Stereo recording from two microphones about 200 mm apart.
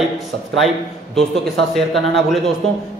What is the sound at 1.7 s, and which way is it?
Speech, centre (ahead or behind).